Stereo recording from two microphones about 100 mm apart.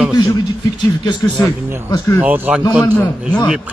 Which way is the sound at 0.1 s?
40° left (ahead or behind).